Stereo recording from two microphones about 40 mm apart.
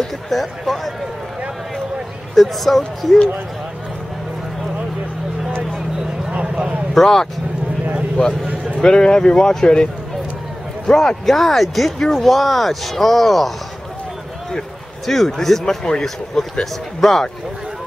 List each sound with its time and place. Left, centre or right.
0.0 s speech: centre
2.3 s speech: centre
6.3 s a sound: right
6.9 s speech: centre
8.5 s a sound: right
8.8 s speech: centre
10.9 s speech: centre
11.2 s speech: centre
15.0 s speech: centre